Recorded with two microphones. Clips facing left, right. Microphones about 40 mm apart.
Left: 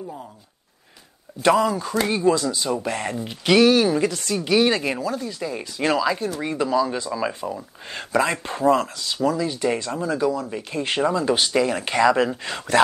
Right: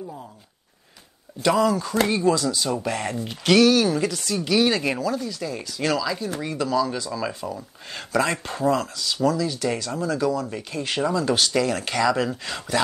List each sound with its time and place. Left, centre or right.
1.4 s speech: left